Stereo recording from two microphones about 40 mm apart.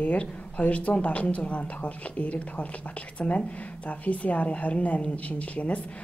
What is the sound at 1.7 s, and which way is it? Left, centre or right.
Speech, left.